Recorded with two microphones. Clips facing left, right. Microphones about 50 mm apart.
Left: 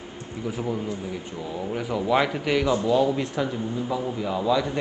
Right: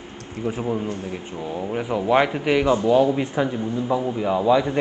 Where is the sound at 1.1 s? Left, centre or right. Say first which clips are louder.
Right 3 dB; right.